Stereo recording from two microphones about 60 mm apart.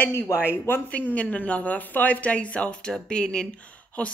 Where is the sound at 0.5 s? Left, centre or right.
Left.